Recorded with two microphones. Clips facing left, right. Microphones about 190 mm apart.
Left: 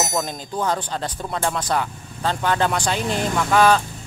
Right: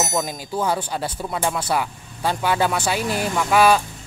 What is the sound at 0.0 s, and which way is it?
Speech, 5° right (ahead or behind).